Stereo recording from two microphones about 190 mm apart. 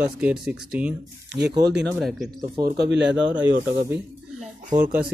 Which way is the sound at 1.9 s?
Centre (ahead or behind).